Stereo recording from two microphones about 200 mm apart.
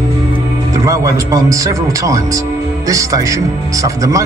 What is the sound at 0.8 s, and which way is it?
Speech, 15° right (ahead or behind).